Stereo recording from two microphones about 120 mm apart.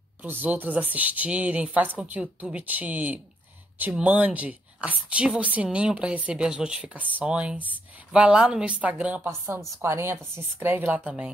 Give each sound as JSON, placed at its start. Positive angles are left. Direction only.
{"t": 0.2, "sound": "a woman's voice", "side_deg": -15}